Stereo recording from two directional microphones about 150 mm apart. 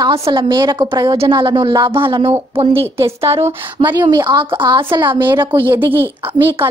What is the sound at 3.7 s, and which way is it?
A woman's voice, 30° right (ahead or behind).